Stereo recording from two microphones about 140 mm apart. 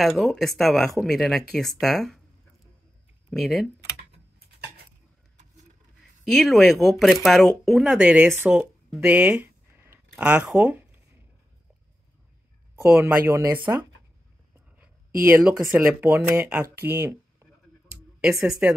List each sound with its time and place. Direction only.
0.0 s speech: centre (ahead or behind)
3.3 s speech: centre (ahead or behind)
6.2 s speech: centre (ahead or behind)
13.0 s speech: 20° right (ahead or behind)
15.1 s speech: 15° right (ahead or behind)
18.4 s speech: 10° right (ahead or behind)